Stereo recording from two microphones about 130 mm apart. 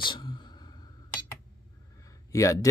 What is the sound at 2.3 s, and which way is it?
Speech, 25° left (ahead or behind).